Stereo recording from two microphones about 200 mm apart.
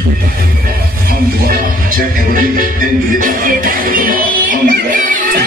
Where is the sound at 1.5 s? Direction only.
45° right (ahead or behind).